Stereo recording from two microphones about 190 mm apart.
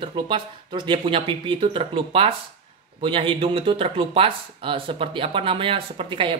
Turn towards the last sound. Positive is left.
turn(degrees=-25)  # may be behind; listen again after turning